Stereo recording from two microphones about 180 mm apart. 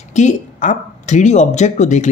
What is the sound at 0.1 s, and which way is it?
Speech, 40° left (ahead or behind).